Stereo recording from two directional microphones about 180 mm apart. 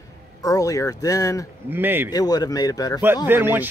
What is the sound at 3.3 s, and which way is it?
Speech, 10° right (ahead or behind).